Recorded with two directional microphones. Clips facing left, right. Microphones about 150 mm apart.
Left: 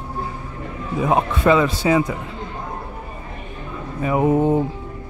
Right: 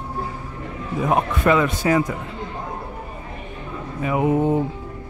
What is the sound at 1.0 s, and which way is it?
Speech, 25° left (ahead or behind).